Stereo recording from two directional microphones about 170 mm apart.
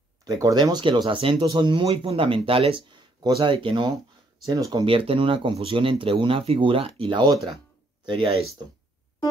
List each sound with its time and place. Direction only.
0.2 s speech: 20° right (ahead or behind)
4.8 s speech: 30° right (ahead or behind)